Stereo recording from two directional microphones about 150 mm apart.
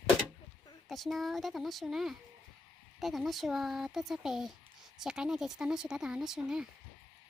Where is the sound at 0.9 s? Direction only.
Centre (ahead or behind).